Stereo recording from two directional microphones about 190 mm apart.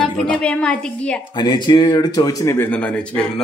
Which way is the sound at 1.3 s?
25° left (ahead or behind).